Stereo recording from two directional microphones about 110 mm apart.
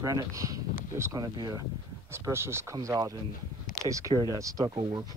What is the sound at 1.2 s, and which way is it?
Speech, 40° right (ahead or behind).